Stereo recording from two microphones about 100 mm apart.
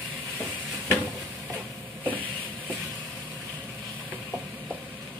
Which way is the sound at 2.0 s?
15° left (ahead or behind).